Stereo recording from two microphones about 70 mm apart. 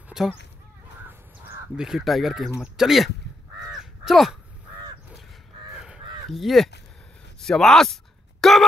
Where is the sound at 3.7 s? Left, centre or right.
Centre.